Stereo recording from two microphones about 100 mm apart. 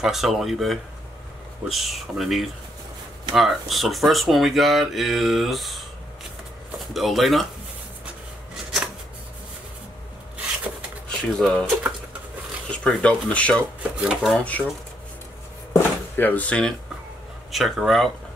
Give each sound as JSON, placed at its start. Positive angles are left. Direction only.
{"t": 0.0, "sound": "speech", "side_deg": 0}
{"t": 6.9, "sound": "speech", "side_deg": 0}
{"t": 11.1, "sound": "speech", "side_deg": 5}
{"t": 13.9, "sound": "speech", "side_deg": -10}
{"t": 14.4, "sound": "speech", "side_deg": 15}
{"t": 15.7, "sound": "drawer open or close", "side_deg": 20}
{"t": 17.5, "sound": "speech", "side_deg": 0}